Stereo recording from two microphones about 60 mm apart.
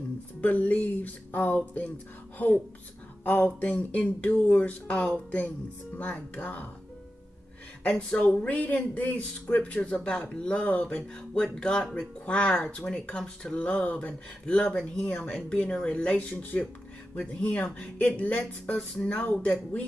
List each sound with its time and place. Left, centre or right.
0.4 s speech: left
3.6 s speech: left
8.1 s speech: left
13.6 s speech: left